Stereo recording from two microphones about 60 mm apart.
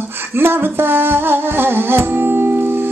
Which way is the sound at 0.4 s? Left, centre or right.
Right.